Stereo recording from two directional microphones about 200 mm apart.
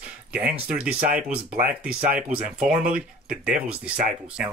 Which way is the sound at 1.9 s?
50° right (ahead or behind).